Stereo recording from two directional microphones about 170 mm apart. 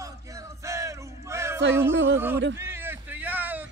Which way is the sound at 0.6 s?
20° right (ahead or behind).